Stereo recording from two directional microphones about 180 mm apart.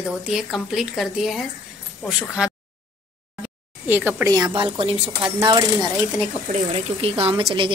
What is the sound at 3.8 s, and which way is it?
A woman's voice, 10° right (ahead or behind).